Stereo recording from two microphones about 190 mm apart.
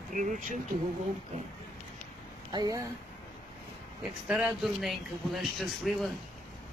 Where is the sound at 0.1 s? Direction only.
40° right (ahead or behind).